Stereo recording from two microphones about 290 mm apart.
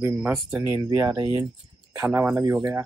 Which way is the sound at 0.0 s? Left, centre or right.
Centre.